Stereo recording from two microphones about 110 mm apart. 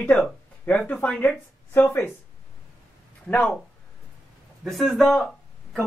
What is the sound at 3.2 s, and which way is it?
Speech, 10° left (ahead or behind).